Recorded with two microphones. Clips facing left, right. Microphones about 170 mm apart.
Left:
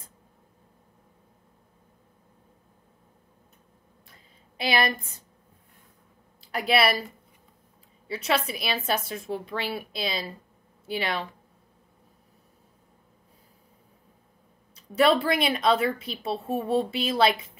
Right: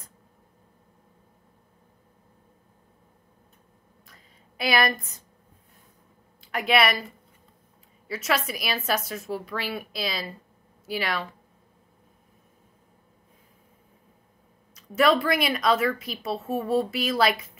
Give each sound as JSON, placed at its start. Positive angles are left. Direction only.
{"t": 4.1, "sound": "a sound", "side_deg": 30}
{"t": 6.5, "sound": "a woman's voice", "side_deg": 35}
{"t": 8.1, "sound": "speech", "side_deg": 30}
{"t": 14.8, "sound": "a woman's voice", "side_deg": 30}